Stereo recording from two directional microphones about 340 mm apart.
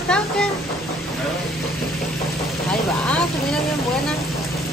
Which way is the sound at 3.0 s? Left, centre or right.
Centre.